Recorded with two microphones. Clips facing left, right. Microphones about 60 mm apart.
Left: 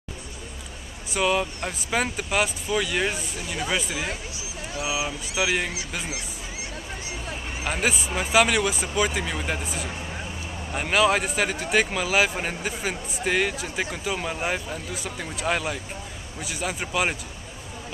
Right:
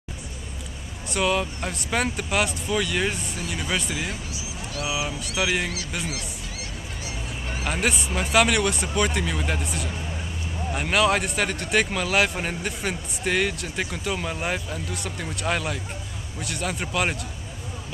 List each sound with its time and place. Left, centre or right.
1.0 s speech: centre
4.7 s mantra: centre
7.6 s speech: centre